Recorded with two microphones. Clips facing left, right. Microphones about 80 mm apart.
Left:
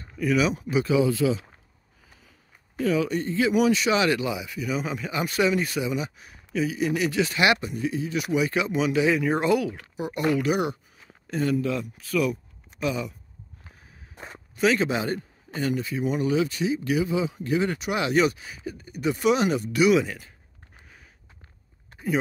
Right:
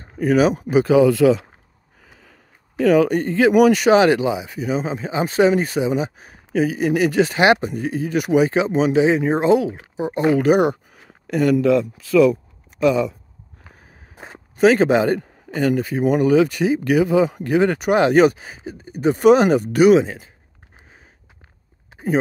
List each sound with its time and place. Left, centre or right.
0.0 s speech: right
1.0 s speech: right
2.0 s sniff: right
3.0 s speech: right
8.5 s speech: right
10.4 s speech: right
11.0 s a sound: right
12.8 s speech: right
14.6 s speech: right
18.6 s speech: right
20.0 s speech: right